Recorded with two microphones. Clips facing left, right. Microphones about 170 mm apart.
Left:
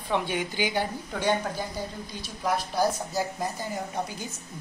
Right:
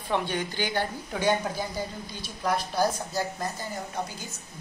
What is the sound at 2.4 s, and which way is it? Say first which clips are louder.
A woman's voice: even; 5° left (ahead or behind).